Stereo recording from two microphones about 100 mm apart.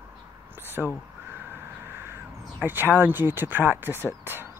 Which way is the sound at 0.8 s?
Centre (ahead or behind).